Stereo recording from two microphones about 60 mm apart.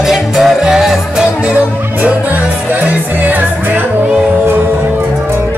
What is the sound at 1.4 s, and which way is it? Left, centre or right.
Music, right.